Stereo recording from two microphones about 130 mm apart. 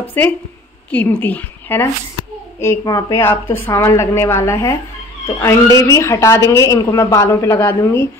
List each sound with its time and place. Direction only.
0.0 s a woman's voice: 15° left (ahead or behind)
2.8 s speech: 25° left (ahead or behind)